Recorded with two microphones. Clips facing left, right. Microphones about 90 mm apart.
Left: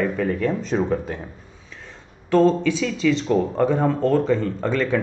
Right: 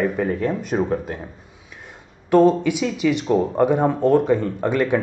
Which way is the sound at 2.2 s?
15° right (ahead or behind).